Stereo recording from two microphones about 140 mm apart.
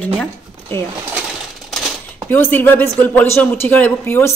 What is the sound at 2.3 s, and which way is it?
Speech, 15° left (ahead or behind).